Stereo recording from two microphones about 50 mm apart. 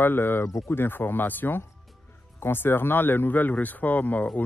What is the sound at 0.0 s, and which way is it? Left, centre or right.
Speech, left.